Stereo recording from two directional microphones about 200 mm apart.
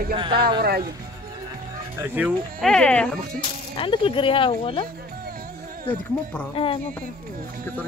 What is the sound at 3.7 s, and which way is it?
Speech, 25° left (ahead or behind).